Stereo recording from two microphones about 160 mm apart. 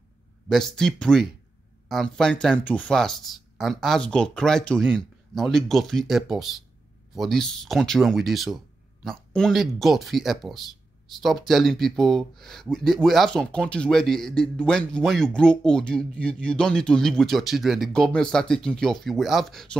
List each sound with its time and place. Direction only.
0.5 s a man's voice: 5° left (ahead or behind)